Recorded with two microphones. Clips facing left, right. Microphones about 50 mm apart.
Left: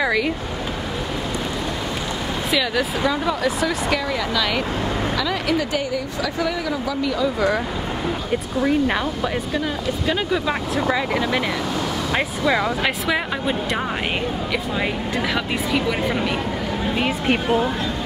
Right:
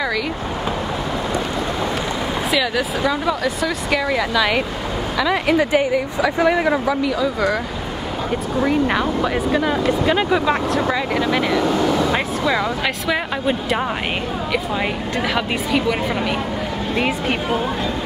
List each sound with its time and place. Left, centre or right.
2.5 s speech: centre
4.1 s a woman's voice: centre
7.1 s speech: centre
8.6 s a woman's voice: centre
10.0 s speech: centre
10.4 s speech: centre